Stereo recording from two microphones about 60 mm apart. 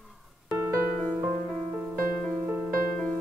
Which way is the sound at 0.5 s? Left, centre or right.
Right.